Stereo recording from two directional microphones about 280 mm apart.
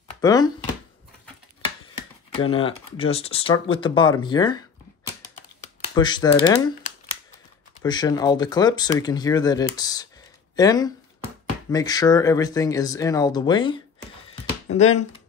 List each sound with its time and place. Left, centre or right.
0.2 s speech: centre
2.3 s speech: centre
5.9 s speech: centre
7.8 s speech: centre
14.3 s a sound: left